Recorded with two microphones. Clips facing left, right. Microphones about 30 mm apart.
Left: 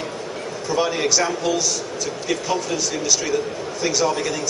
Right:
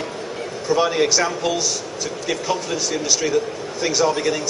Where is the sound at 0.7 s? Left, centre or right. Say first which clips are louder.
Right 3 dB; centre.